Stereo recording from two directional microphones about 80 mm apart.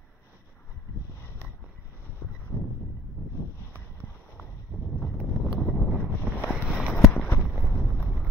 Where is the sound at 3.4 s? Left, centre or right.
Left.